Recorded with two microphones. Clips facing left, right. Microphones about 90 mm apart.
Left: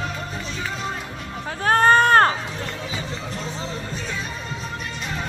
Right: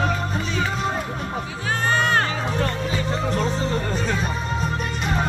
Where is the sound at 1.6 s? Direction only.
50° left (ahead or behind).